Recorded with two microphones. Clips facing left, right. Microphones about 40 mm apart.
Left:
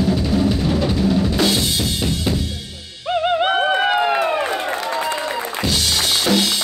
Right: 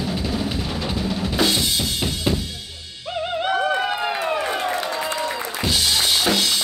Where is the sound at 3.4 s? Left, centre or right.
Left.